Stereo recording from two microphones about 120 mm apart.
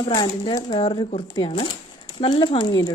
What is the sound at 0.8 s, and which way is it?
A woman's voice, 50° left (ahead or behind).